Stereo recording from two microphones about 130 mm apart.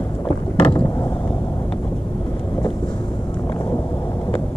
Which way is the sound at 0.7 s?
30° left (ahead or behind).